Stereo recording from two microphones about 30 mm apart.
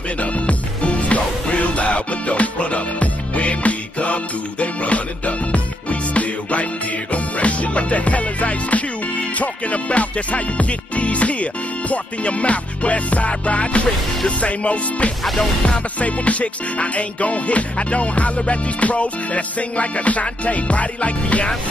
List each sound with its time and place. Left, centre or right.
0.2 s music: left